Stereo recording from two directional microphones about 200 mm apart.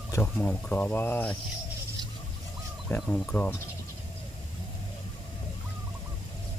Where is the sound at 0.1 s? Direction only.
10° left (ahead or behind).